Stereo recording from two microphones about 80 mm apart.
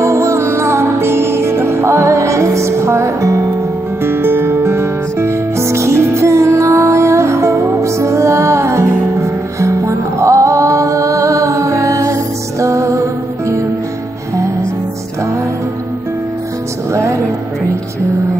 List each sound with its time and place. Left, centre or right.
0.0 s music: right